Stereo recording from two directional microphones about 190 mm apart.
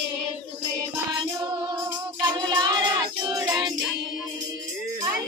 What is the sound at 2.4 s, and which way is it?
Music, 25° right (ahead or behind).